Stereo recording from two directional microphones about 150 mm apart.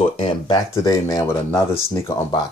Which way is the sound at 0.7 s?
20° left (ahead or behind).